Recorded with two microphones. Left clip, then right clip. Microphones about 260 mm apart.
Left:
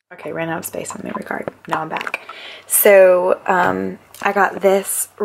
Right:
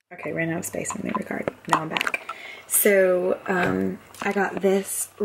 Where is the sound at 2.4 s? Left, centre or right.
Left.